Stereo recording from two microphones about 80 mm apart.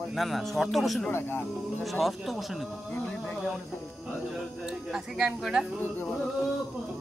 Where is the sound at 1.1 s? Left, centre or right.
Left.